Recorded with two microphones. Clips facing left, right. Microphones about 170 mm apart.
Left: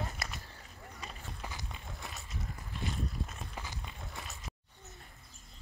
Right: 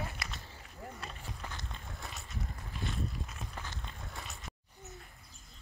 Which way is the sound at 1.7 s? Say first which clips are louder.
Even; centre (ahead or behind).